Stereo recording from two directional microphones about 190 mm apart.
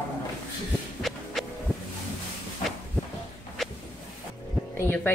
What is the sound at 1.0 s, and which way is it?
Music, centre (ahead or behind).